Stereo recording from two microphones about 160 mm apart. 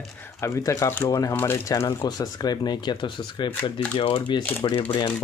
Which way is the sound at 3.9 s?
30° left (ahead or behind).